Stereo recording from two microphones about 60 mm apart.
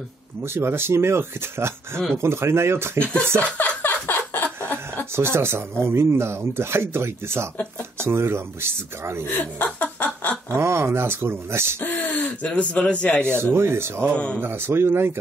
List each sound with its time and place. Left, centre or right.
0.4 s speech: right
3.5 s a sound: left
5.1 s speech: right
9.3 s chuckle: left
10.6 s speech: right
11.8 s speech: left
13.3 s speech: right
14.1 s speech: centre
14.4 s a man's voice: right